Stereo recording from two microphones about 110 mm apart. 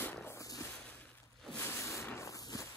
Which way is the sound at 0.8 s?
10° left (ahead or behind).